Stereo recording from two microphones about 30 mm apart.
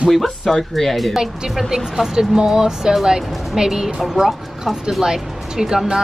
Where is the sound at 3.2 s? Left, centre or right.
Centre.